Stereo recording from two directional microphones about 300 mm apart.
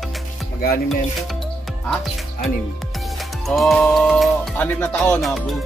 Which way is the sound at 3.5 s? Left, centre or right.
Centre.